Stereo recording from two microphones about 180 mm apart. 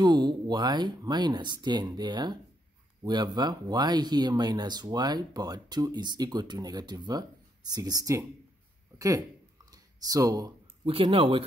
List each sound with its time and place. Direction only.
0.0 s a woman's voice: 25° right (ahead or behind)
9.7 s a sound: 20° right (ahead or behind)
10.9 s speech: 30° right (ahead or behind)